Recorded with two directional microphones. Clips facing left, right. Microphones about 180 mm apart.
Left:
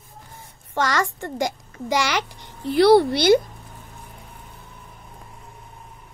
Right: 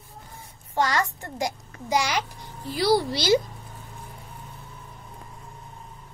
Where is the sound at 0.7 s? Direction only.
90° left; by 3.3 s 60° left (ahead or behind).